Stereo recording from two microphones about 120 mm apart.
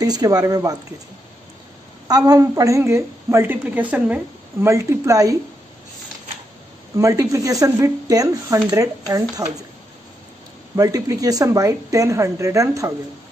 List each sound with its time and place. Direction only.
0.0 s speech: 30° right (ahead or behind)
2.0 s a woman's voice: 30° right (ahead or behind); by 4.6 s 10° right (ahead or behind)
4.6 s a woman's voice: 25° right (ahead or behind)
7.0 s a woman's voice: 25° right (ahead or behind)
10.8 s a woman's voice: 30° right (ahead or behind)